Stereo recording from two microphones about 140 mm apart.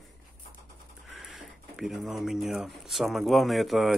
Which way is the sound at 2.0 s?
Centre (ahead or behind).